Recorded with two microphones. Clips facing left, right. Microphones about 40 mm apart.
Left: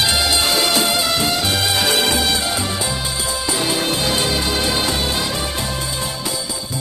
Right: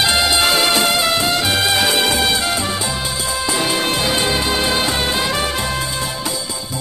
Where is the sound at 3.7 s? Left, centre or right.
Right.